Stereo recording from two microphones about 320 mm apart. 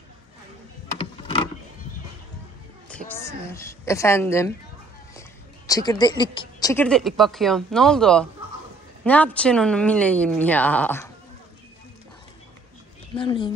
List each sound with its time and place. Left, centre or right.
0.9 s vehicle: centre
2.9 s a woman's voice: centre
5.7 s speech: centre
13.1 s speech: centre